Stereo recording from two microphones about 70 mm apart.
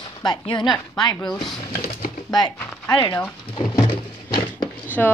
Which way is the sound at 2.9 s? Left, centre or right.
Left.